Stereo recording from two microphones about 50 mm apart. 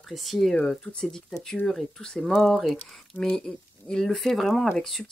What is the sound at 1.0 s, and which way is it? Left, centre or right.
Speech, centre.